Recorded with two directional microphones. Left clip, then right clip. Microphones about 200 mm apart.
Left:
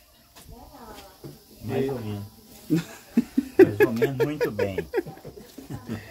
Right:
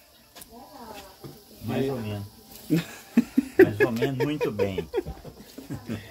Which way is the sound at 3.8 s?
30° left (ahead or behind).